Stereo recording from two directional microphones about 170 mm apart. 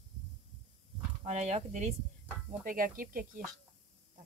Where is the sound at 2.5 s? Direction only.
55° right (ahead or behind).